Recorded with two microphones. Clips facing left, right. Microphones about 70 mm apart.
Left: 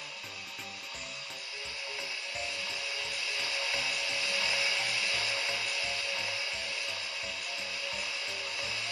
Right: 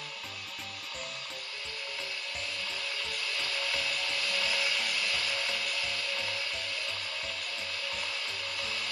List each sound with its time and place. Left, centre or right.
3.0 s music: centre